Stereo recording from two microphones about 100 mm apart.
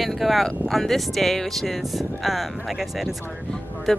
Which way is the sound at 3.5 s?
Centre (ahead or behind).